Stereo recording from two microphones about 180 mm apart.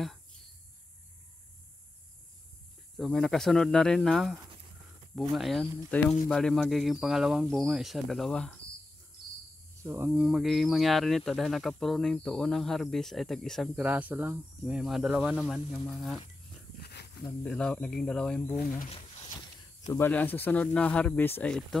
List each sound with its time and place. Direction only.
3.0 s speech: centre (ahead or behind)
9.8 s speech: 15° right (ahead or behind)
16.8 s snake: 65° left (ahead or behind)
17.4 s speech: 5° left (ahead or behind)
19.9 s speech: 10° left (ahead or behind)